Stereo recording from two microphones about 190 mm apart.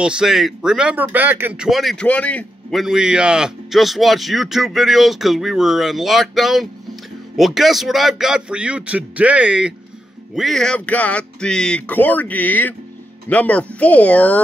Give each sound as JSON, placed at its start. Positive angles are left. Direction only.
{"t": 0.0, "sound": "speech", "side_deg": -5}